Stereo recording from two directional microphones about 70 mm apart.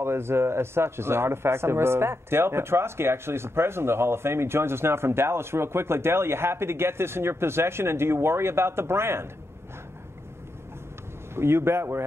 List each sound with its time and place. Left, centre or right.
0.0 s speech: right
11.3 s speech: right